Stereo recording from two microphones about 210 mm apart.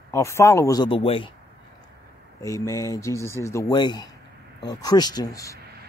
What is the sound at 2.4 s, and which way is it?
A man's voice, 15° left (ahead or behind).